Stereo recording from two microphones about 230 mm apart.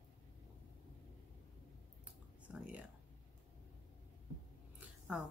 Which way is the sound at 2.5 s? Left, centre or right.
Centre.